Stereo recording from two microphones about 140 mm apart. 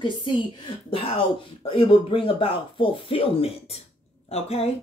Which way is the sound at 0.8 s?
40° left (ahead or behind).